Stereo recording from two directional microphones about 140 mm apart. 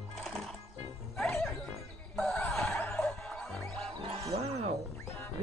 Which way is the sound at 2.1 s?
5° left (ahead or behind).